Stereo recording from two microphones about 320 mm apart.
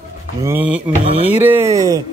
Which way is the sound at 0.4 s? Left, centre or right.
Centre.